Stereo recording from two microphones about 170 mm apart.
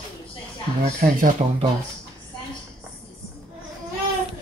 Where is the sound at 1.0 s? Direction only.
55° right (ahead or behind).